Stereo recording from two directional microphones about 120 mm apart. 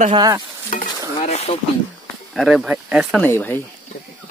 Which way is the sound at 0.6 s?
85° left.